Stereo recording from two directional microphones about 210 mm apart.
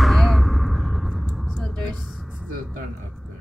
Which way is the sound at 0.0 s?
Centre (ahead or behind).